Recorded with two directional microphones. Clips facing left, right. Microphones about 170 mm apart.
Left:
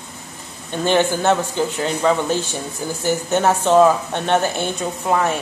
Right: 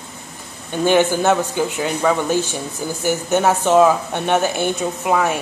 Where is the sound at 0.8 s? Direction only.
5° right (ahead or behind).